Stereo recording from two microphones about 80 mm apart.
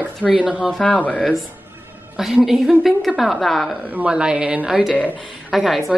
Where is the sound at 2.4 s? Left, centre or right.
Centre.